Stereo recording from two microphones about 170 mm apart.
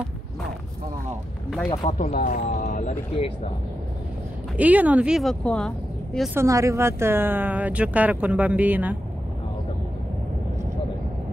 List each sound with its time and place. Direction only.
1.9 s speech: 45° left (ahead or behind)
4.6 s speech: 10° right (ahead or behind)
6.3 s speech: 20° right (ahead or behind)